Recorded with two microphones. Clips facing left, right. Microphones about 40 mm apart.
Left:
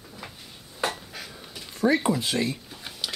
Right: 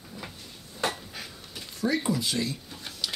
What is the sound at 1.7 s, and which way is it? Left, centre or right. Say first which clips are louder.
Speech: left 5 dB; left.